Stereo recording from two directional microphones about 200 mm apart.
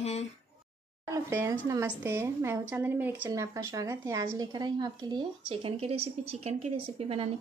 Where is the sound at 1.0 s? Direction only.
15° right (ahead or behind).